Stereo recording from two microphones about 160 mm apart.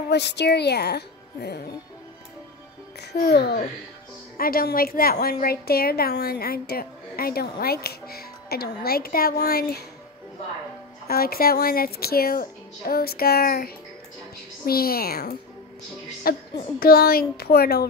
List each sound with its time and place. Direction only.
0.1 s speech: 90° left
3.1 s a woman's voice: 75° left (ahead or behind)
4.4 s a woman's voice: 70° left (ahead or behind)
11.1 s a woman's voice: 70° left (ahead or behind)
14.7 s a woman's voice: 70° left (ahead or behind)